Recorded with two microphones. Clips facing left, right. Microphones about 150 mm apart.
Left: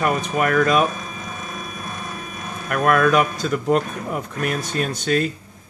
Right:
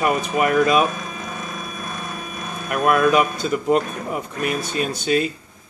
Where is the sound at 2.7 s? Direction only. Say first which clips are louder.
Even; 5° right (ahead or behind).